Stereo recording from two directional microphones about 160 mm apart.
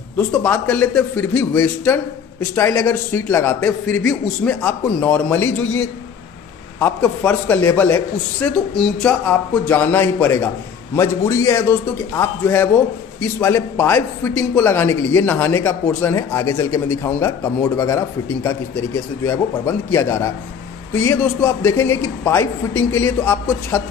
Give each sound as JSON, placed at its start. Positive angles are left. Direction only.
{"t": 0.3, "sound": "a man's voice", "side_deg": 10}